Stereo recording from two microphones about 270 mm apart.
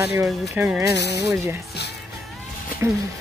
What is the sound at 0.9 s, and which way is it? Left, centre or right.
Speech, left.